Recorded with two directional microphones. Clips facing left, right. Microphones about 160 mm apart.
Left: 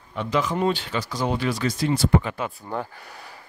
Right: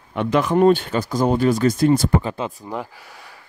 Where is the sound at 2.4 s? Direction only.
10° right (ahead or behind).